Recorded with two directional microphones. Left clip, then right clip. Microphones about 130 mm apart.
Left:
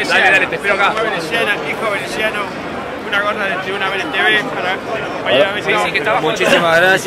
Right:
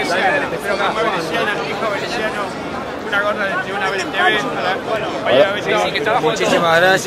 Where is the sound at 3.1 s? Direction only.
Centre (ahead or behind).